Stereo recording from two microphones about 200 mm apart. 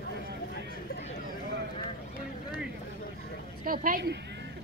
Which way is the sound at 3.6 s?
45° right (ahead or behind).